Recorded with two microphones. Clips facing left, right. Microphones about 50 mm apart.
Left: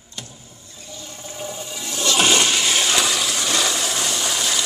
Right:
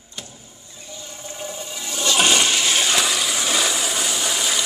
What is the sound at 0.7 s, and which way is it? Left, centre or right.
Toilet flush, centre.